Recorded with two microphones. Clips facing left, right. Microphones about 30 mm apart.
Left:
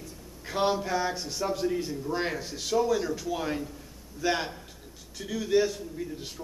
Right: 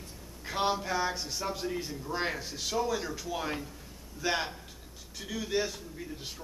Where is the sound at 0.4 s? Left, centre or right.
Centre.